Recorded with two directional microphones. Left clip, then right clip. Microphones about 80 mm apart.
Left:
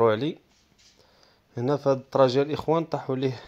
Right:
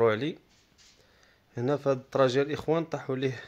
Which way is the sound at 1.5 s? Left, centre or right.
Left.